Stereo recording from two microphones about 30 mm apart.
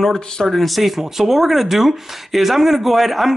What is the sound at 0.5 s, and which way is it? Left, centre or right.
Speech, centre.